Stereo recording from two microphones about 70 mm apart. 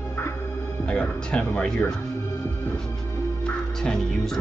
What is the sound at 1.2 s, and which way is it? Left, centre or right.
A man's voice, centre.